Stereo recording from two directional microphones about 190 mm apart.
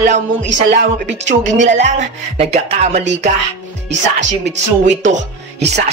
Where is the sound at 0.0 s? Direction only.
40° right (ahead or behind).